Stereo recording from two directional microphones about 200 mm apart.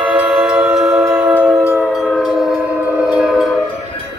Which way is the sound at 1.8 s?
Centre (ahead or behind).